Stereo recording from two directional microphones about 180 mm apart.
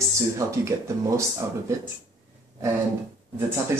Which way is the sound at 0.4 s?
15° right (ahead or behind).